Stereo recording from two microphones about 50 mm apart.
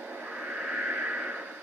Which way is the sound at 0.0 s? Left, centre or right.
Centre.